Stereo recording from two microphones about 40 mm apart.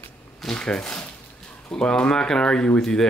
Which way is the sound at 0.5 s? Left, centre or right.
Left.